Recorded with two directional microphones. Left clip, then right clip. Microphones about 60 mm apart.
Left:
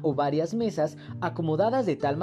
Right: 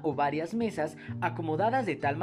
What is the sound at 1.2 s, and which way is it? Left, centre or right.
Speech, left.